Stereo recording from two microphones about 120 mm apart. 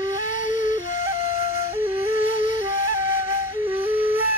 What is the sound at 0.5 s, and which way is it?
Flute, 90° left.